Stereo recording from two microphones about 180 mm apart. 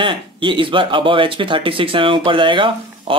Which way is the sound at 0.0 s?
25° right (ahead or behind).